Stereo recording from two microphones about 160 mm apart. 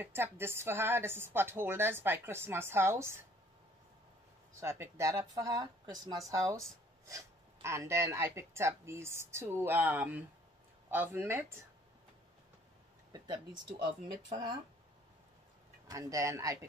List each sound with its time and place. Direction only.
0.0 s a woman's voice: 15° right (ahead or behind)
4.6 s a woman's voice: 15° right (ahead or behind)
13.1 s speech: 30° right (ahead or behind)
15.9 s speech: 20° right (ahead or behind)